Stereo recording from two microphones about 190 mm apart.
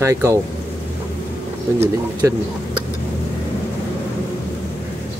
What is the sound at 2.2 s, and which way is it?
Speech, 15° right (ahead or behind).